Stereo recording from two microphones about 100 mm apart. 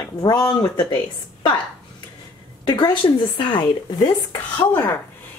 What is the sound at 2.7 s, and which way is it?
A woman's voice, 55° left (ahead or behind).